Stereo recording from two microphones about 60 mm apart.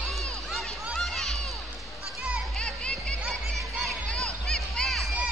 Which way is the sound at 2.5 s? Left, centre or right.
Centre.